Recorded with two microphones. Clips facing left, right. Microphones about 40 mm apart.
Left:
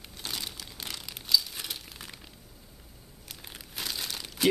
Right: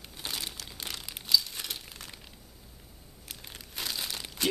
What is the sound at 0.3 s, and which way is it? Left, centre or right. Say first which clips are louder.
Crumpling: even; centre.